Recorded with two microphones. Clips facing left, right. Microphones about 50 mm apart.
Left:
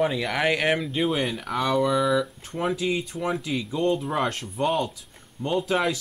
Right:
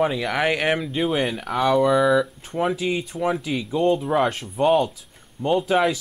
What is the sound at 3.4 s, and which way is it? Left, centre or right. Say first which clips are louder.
Speech: right 4 dB; right.